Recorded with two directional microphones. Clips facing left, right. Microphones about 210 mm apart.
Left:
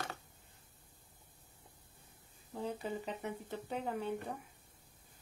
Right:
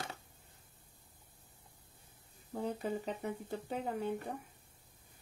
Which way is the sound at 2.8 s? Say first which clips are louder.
Right 2 dB; 40° right (ahead or behind).